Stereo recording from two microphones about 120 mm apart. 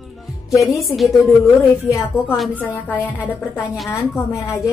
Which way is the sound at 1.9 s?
25° left (ahead or behind).